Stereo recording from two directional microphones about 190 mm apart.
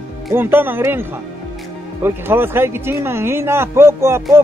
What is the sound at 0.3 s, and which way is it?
Speech, 10° right (ahead or behind).